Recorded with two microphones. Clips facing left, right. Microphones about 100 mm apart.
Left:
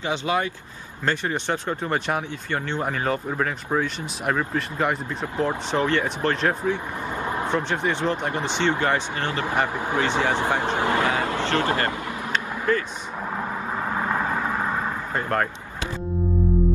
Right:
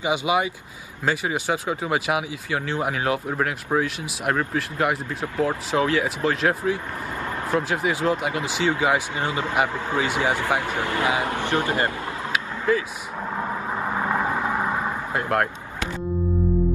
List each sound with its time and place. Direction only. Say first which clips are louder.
0.0 s speech: right 2 dB; 10° right (ahead or behind)
12.3 s vehicle: right 1 dB; 5° right (ahead or behind)
15.1 s speech: right 1 dB; 5° right (ahead or behind)